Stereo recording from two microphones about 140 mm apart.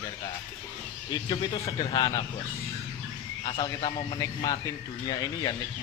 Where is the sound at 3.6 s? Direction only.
35° left (ahead or behind).